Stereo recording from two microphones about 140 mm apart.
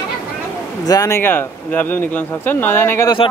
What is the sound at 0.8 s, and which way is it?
Speech, 25° left (ahead or behind).